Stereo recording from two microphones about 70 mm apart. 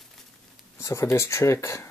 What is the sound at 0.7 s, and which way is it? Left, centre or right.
Speech, left.